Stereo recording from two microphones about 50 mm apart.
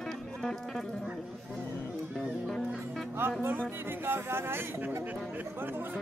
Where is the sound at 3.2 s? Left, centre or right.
Right.